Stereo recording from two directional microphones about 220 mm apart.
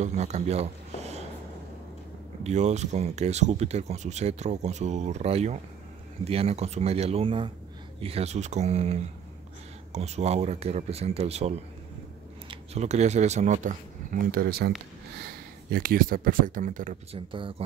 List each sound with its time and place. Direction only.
0.0 s speech: 30° right (ahead or behind)
2.4 s speech: 30° right (ahead or behind)
14.3 s speech: 45° right (ahead or behind)
17.3 s speech: 25° right (ahead or behind)